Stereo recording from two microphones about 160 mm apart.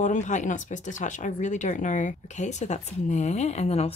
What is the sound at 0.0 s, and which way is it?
Speech, 50° left (ahead or behind).